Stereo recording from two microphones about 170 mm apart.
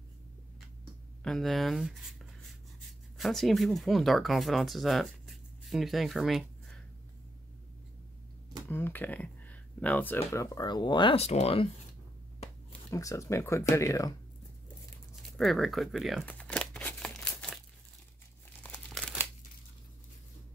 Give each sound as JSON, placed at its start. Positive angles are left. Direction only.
{"t": 1.2, "sound": "speech", "side_deg": 0}
{"t": 3.2, "sound": "speech", "side_deg": 0}
{"t": 8.6, "sound": "speech", "side_deg": 10}
{"t": 12.9, "sound": "speech", "side_deg": 20}
{"t": 15.3, "sound": "crumpling", "side_deg": 0}
{"t": 18.6, "sound": "crumpling", "side_deg": 5}